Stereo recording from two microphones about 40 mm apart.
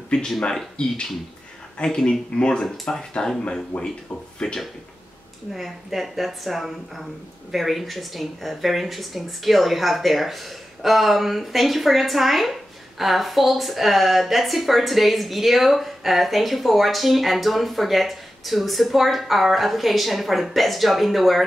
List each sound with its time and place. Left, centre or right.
0.1 s speech: left
2.0 s speech: left
3.7 s speech: left
4.4 s speech: centre
5.5 s a woman's voice: centre